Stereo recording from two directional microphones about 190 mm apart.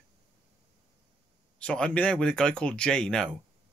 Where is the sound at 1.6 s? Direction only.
5° left (ahead or behind).